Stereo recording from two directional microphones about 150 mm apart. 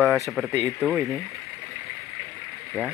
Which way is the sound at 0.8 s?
Centre (ahead or behind).